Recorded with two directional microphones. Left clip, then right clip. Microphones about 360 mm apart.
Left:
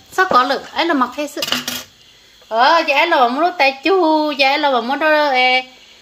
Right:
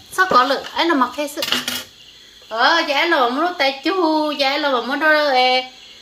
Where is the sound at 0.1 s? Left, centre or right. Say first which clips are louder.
Left 1 dB; left.